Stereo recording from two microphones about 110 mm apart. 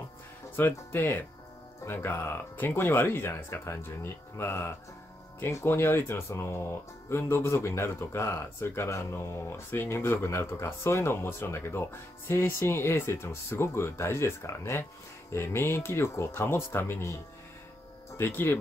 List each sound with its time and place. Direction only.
0.6 s speech: 20° left (ahead or behind)